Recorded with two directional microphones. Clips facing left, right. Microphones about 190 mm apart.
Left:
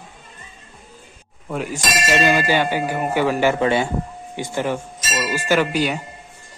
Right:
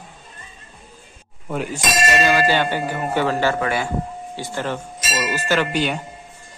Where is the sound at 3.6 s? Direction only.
25° left (ahead or behind).